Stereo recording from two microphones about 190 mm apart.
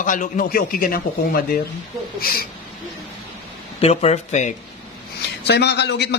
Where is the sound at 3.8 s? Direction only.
35° left (ahead or behind).